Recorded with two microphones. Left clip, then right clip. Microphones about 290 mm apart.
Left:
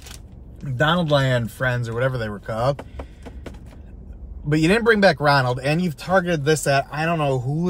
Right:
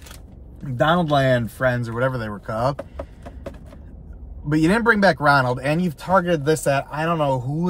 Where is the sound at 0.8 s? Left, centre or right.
Centre.